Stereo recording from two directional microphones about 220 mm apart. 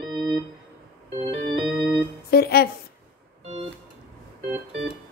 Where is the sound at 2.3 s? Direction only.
45° left (ahead or behind).